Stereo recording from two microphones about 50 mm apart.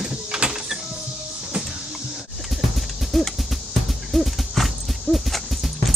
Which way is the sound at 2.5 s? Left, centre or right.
Centre.